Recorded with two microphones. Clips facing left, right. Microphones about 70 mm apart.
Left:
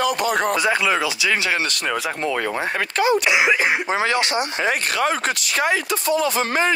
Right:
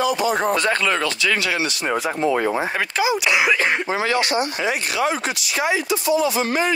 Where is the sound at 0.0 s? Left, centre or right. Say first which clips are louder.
Even; left.